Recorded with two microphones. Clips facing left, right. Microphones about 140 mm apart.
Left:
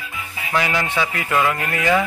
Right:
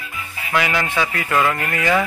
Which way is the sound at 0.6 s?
25° left (ahead or behind).